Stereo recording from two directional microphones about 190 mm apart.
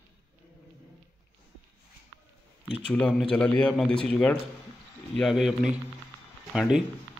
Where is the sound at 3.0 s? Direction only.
5° left (ahead or behind).